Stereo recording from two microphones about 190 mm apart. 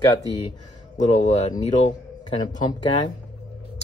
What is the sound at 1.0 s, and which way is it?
Speech, 35° left (ahead or behind).